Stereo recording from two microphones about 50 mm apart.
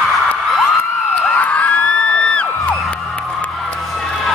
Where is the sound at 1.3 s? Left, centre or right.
Left.